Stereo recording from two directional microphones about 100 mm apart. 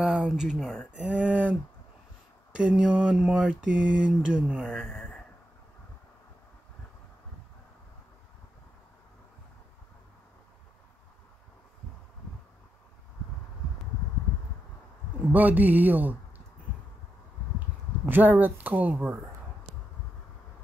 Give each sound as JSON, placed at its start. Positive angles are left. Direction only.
{"t": 0.0, "sound": "speech", "side_deg": -5}
{"t": 0.9, "sound": "mantra", "side_deg": -15}
{"t": 15.2, "sound": "speech", "side_deg": -15}
{"t": 18.0, "sound": "speech", "side_deg": -20}